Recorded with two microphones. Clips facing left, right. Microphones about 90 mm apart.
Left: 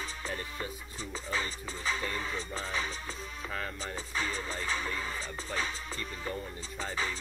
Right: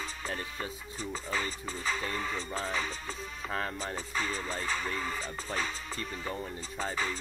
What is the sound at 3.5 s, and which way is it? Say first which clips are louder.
Music: right 4 dB; 35° right (ahead or behind).